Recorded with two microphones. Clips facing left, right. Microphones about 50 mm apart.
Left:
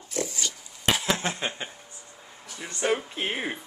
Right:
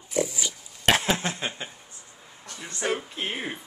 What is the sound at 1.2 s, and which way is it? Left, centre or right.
Speech, centre.